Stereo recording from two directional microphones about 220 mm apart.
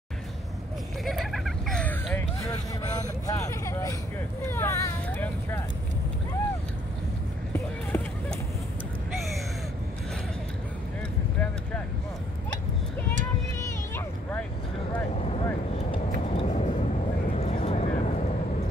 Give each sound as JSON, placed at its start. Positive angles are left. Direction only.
{"t": 1.0, "sound": "vehicle", "side_deg": 0}
{"t": 2.5, "sound": "vehicle", "side_deg": 15}
{"t": 4.5, "sound": "a sound", "side_deg": 10}
{"t": 7.5, "sound": "run", "side_deg": 10}
{"t": 13.6, "sound": "a sound", "side_deg": 10}
{"t": 15.1, "sound": "vehicle", "side_deg": 30}